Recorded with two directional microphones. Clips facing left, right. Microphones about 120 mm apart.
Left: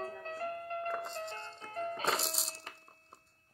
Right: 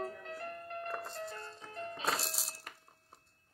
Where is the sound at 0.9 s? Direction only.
20° left (ahead or behind).